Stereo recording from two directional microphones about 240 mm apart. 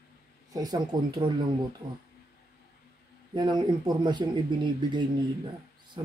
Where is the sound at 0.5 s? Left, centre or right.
Centre.